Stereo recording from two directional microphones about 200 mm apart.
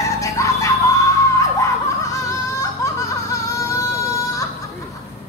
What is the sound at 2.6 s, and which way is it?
Music, 15° left (ahead or behind).